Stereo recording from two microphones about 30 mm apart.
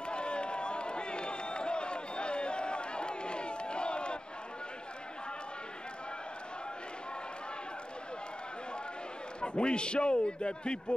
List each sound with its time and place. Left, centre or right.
0.0 s crowd: left
9.4 s a man's voice: left